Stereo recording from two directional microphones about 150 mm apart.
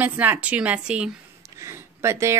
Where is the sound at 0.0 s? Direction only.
10° right (ahead or behind).